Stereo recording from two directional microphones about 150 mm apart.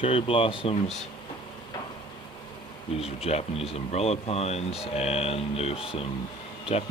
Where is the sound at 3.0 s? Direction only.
40° left (ahead or behind).